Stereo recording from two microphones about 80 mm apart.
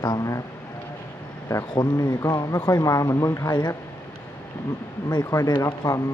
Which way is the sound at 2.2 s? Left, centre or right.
Left.